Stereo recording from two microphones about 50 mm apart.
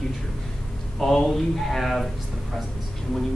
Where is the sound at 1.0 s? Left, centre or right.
Centre.